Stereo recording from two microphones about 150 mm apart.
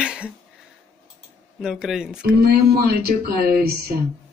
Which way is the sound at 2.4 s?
90° right.